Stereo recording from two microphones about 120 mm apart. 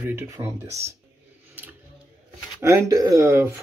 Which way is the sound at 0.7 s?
60° right (ahead or behind).